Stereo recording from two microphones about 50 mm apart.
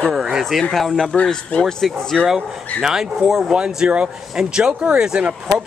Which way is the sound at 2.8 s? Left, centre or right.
Centre.